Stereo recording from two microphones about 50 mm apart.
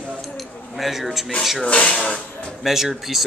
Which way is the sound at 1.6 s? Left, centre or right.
Left.